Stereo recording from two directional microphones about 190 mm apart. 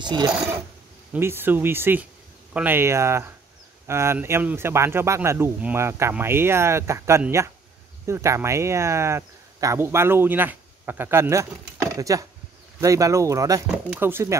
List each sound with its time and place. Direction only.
0.0 s speech: 25° right (ahead or behind)
0.3 s speech: 5° right (ahead or behind)